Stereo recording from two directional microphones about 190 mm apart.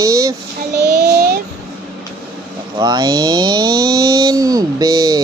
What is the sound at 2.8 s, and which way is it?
Speech, 20° right (ahead or behind).